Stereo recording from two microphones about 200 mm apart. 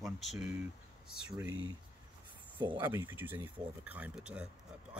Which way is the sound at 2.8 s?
10° right (ahead or behind).